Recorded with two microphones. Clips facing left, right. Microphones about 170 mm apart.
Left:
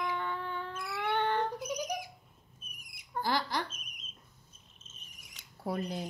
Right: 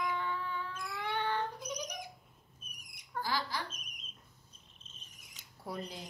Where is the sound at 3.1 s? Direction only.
20° left (ahead or behind).